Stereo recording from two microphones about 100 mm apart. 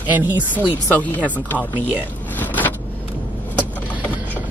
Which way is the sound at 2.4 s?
15° left (ahead or behind).